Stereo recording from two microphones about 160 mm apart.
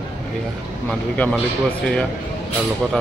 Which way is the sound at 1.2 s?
10° left (ahead or behind).